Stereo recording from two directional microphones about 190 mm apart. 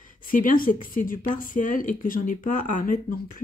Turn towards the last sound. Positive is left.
turn(degrees=45)  # may be behind; listen again after turning